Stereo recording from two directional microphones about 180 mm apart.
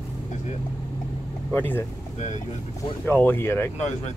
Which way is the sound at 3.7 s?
40° left (ahead or behind).